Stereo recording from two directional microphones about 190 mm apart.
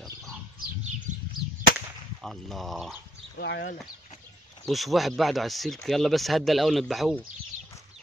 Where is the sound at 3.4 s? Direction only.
60° left (ahead or behind).